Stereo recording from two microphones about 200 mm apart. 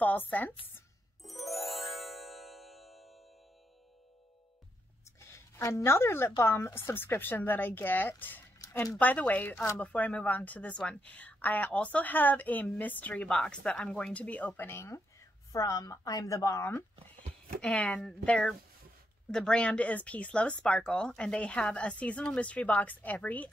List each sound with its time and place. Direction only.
0.0 s a woman's voice: 10° left (ahead or behind)
1.2 s music: centre (ahead or behind)
5.3 s a woman's voice: 15° left (ahead or behind)